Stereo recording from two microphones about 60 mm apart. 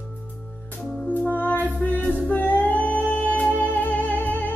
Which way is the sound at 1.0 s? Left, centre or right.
Left.